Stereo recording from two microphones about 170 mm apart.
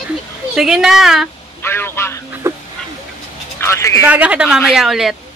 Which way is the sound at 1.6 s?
15° left (ahead or behind).